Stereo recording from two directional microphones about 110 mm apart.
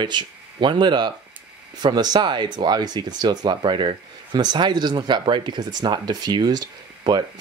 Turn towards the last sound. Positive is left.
turn(degrees=-40)  # may be behind; listen again after turning